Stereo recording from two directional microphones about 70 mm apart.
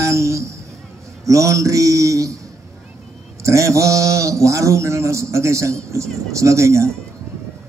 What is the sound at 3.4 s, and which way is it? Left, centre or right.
Speech, right.